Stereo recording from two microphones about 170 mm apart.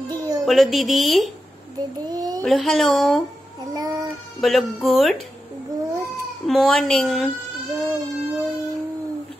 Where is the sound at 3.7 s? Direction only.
20° right (ahead or behind).